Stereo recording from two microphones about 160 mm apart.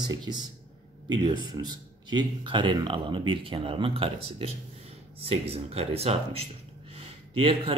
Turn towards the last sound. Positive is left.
turn(degrees=-35)  # may be behind; listen again after turning